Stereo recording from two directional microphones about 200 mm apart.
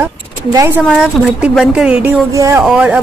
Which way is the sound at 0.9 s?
Centre (ahead or behind).